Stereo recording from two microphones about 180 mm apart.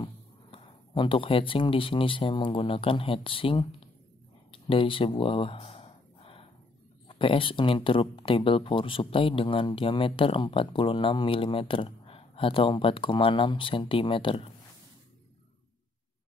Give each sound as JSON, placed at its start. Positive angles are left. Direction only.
{"t": 0.0, "sound": "speech", "side_deg": 25}
{"t": 4.5, "sound": "a sound", "side_deg": 30}
{"t": 7.1, "sound": "speech", "side_deg": 30}